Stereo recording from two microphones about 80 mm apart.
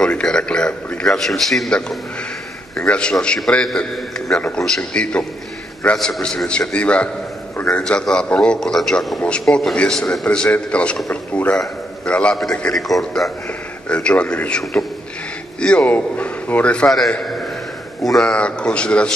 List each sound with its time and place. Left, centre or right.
0.0 s a man's voice: centre
13.8 s a man's voice: centre
18.2 s a man's voice: centre